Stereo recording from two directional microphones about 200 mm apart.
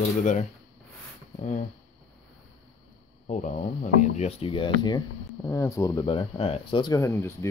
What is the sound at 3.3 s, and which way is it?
Speech, 40° left (ahead or behind).